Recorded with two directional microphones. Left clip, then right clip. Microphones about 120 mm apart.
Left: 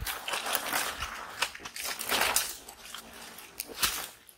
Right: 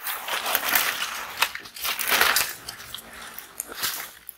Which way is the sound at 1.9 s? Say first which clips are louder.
Right 8 dB; 30° right (ahead or behind).